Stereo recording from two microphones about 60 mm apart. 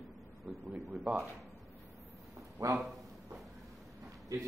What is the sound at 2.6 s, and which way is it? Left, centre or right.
Speech, right.